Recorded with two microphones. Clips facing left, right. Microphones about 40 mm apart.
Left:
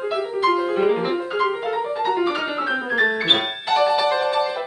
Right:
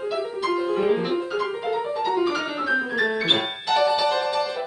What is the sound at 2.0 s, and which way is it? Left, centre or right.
Piano, left.